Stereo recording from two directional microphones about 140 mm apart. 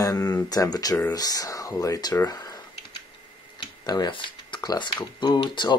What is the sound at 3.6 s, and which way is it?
Speech, 30° left (ahead or behind).